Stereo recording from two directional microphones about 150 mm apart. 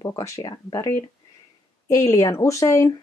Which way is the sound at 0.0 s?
25° left (ahead or behind).